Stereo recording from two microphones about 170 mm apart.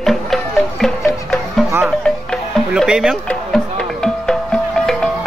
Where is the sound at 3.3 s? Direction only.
5° left (ahead or behind).